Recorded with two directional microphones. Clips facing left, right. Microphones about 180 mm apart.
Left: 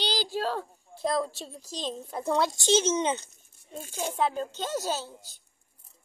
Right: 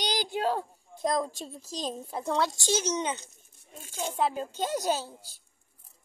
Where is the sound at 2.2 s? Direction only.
15° left (ahead or behind).